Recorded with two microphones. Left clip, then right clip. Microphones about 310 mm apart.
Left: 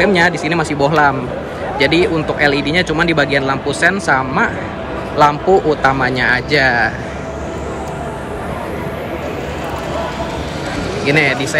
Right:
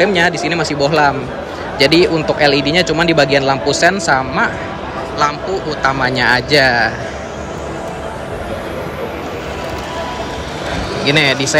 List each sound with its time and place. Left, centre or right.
0.0 s speech: centre
11.1 s speech: centre